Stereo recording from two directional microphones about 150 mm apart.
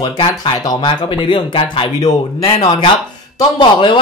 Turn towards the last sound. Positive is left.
turn(degrees=30)  # may be behind; listen again after turning